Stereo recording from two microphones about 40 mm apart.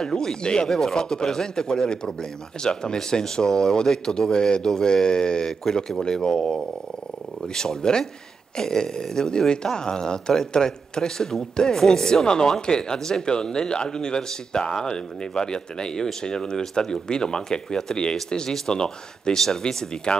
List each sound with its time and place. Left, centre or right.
0.0 s speech: centre
0.7 s speech: centre